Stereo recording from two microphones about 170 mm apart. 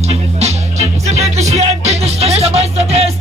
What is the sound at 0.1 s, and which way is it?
Music, 40° right (ahead or behind).